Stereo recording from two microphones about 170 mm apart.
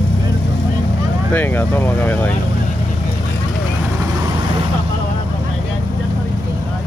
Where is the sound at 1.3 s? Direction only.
10° left (ahead or behind).